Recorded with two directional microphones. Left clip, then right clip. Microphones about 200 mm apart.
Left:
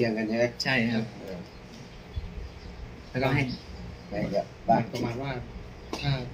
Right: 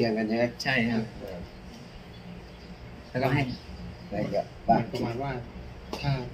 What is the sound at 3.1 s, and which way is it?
Speech, centre (ahead or behind).